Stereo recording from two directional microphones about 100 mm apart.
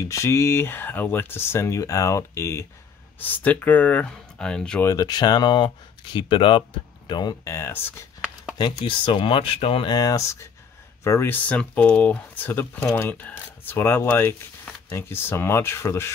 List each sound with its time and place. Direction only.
0.0 s speech: 30° left (ahead or behind)
3.2 s speech: 20° left (ahead or behind)
4.8 s speech: 40° left (ahead or behind)
7.4 s speech: 25° left (ahead or behind)
8.5 s speech: 50° left (ahead or behind); by 9.8 s 75° left (ahead or behind)
9.8 s speech: 40° left (ahead or behind)